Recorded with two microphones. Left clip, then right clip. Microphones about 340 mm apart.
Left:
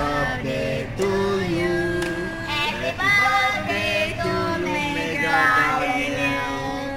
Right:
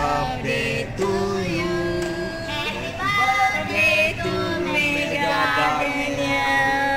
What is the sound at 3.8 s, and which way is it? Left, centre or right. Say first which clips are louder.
Music: right 4 dB; centre.